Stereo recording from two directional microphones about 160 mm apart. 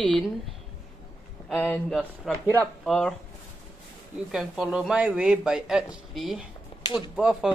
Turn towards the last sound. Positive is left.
turn(degrees=-5)  # may be behind; listen again after turning